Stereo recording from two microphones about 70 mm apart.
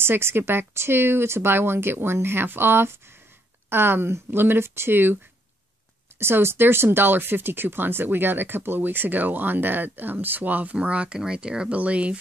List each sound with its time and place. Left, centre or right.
0.0 s speech: right; by 12.2 s centre